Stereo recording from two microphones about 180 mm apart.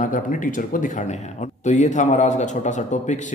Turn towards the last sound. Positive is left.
turn(degrees=40)  # may be behind; listen again after turning